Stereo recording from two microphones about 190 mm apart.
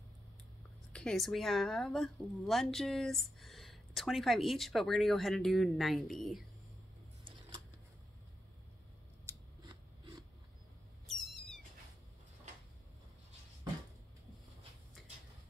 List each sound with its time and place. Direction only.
0.9 s speech: centre (ahead or behind)
7.2 s a sound: 25° right (ahead or behind)
9.3 s scissors: 15° right (ahead or behind)
11.1 s cat: centre (ahead or behind)